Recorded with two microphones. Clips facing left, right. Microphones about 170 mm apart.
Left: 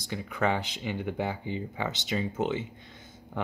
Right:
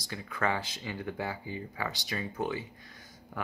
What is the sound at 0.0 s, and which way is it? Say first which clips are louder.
Speech: left 4 dB; 20° left (ahead or behind).